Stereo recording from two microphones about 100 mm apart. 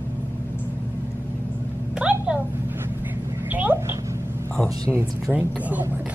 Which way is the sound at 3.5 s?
20° right (ahead or behind).